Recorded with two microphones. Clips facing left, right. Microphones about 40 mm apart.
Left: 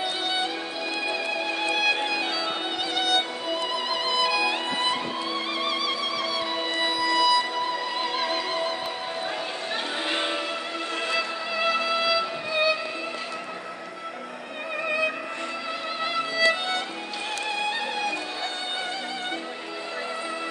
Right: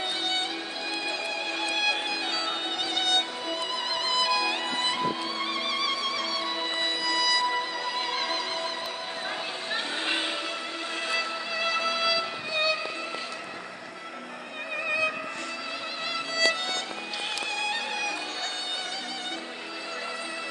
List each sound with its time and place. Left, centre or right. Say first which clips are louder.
1.7 s music: left 4 dB; centre
10.1 s music: left 3 dB; centre
16.3 s music: left 3 dB; left